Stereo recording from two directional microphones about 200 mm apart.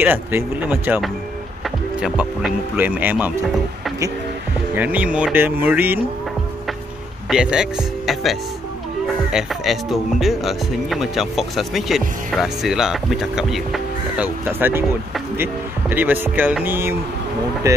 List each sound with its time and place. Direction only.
0.0 s speech: 10° right (ahead or behind)
4.7 s speech: 10° right (ahead or behind)
7.2 s speech: 5° right (ahead or behind)